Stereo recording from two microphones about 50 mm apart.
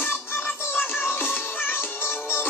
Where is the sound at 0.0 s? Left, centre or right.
Left.